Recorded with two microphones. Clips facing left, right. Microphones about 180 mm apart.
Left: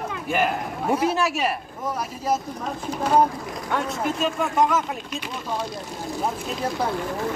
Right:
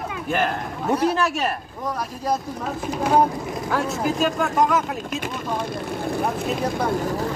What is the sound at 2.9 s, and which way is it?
Speech, 10° right (ahead or behind).